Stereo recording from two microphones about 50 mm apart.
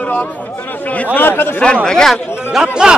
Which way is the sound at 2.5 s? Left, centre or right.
Centre.